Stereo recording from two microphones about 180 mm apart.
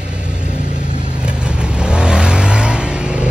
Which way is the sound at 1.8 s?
5° right (ahead or behind).